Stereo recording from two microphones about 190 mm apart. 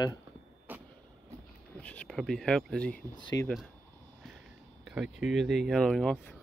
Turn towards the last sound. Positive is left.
turn(degrees=5)  # may be behind; listen again after turning